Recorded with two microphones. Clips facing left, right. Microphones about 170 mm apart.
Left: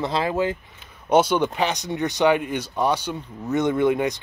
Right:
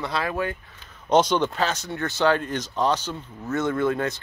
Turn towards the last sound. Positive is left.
turn(degrees=15)  # may be behind; listen again after turning